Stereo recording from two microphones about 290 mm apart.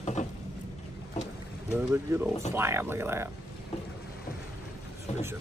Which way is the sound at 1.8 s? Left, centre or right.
Centre.